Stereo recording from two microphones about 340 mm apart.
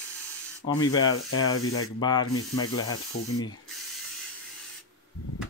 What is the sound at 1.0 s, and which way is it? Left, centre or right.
Ratchet, left.